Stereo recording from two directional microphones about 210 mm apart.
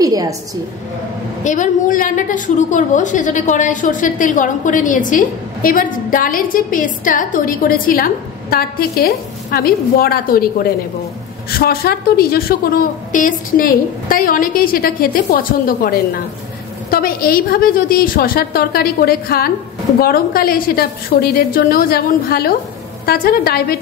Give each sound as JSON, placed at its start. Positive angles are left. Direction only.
{"t": 0.0, "sound": "a woman's voice", "side_deg": -15}
{"t": 1.4, "sound": "a woman's voice", "side_deg": 35}